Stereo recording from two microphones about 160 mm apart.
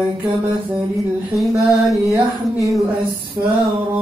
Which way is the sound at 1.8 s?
Centre (ahead or behind).